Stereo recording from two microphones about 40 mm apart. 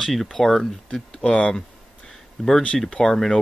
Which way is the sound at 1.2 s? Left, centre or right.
Left.